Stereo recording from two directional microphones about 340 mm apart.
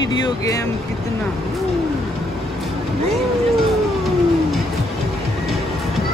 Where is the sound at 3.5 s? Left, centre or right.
Centre.